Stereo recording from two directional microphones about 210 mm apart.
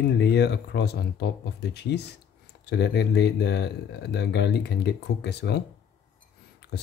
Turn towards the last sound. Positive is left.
turn(degrees=50)  # may be behind; listen again after turning